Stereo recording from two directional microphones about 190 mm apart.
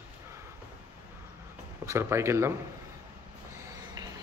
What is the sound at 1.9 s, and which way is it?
Speech, 15° right (ahead or behind).